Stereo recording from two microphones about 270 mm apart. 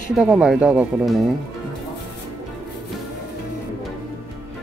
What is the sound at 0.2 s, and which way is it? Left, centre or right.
Speech, centre.